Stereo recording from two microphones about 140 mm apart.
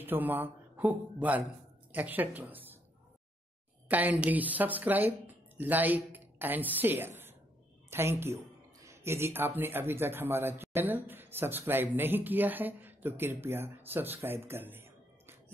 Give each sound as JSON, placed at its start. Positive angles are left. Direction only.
{"t": 0.0, "sound": "speech", "side_deg": -15}
{"t": 3.9, "sound": "speech", "side_deg": -10}